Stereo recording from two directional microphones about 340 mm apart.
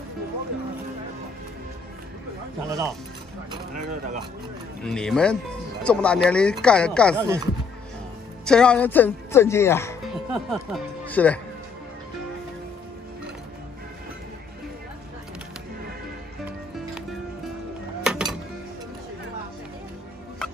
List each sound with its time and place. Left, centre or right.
3.5 s speech: right
4.8 s speech: centre
7.2 s speech: centre
8.5 s speech: centre
18.0 s music: centre